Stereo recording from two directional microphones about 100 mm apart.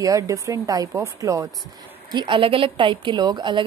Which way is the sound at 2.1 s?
50° right (ahead or behind).